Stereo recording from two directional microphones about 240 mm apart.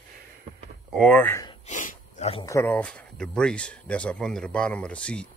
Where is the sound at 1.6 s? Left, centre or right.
Left.